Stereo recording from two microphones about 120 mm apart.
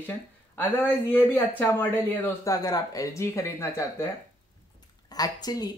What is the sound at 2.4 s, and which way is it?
Speech, 30° left (ahead or behind).